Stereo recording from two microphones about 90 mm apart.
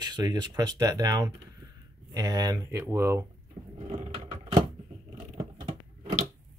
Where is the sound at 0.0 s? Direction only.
55° right (ahead or behind).